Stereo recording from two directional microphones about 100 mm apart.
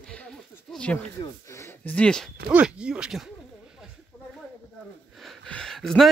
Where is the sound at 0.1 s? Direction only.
10° left (ahead or behind).